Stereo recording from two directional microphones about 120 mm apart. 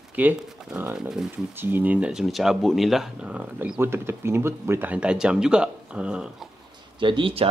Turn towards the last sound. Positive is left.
turn(degrees=-50)  # may be behind; listen again after turning